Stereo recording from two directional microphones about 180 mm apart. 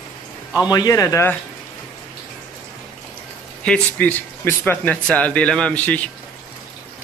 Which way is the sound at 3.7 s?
10° left (ahead or behind).